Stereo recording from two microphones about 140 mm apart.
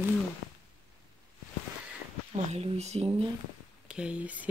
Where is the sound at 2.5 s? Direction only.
50° right (ahead or behind).